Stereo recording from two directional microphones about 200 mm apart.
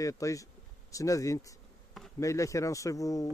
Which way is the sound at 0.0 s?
15° left (ahead or behind).